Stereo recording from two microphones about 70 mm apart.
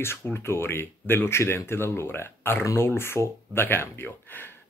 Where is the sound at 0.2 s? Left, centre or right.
Left.